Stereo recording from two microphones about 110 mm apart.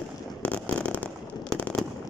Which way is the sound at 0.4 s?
10° left (ahead or behind).